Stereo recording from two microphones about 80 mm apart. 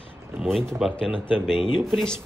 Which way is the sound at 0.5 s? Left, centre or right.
Centre.